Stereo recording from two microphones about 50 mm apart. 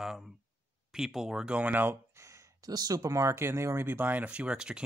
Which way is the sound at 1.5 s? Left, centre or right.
Right.